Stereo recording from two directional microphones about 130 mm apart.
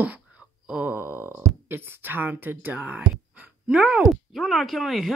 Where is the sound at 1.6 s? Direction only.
15° right (ahead or behind).